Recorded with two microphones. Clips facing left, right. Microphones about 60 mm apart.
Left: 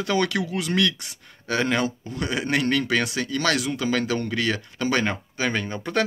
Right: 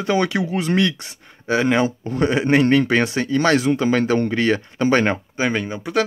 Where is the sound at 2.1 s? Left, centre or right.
Right.